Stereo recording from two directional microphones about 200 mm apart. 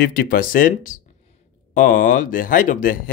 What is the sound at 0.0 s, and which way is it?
Speech, 45° left (ahead or behind).